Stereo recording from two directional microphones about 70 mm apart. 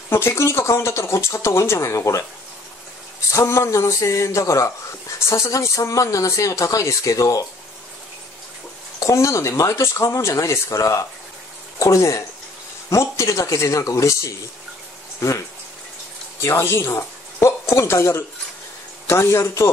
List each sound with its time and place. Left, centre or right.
0.1 s speech: left
3.3 s speech: left
9.0 s a man's voice: left